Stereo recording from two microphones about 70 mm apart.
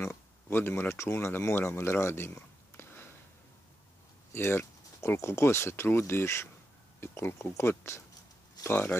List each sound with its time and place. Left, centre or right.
0.0 s speech: left
2.8 s a sound: left
4.3 s speech: left
8.6 s speech: left